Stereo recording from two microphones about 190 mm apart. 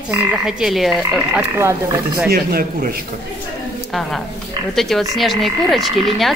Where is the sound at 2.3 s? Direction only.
50° right (ahead or behind).